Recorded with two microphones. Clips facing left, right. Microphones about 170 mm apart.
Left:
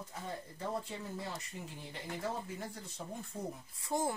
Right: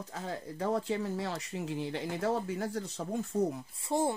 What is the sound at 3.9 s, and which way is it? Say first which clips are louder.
Speech: right 5 dB; 25° right (ahead or behind).